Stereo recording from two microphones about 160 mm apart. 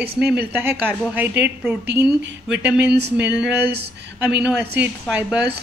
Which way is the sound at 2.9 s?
90° right.